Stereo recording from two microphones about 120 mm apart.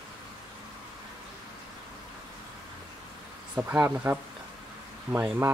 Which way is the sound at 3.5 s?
10° right (ahead or behind).